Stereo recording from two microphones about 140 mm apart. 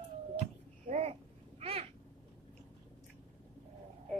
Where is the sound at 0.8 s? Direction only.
55° right (ahead or behind).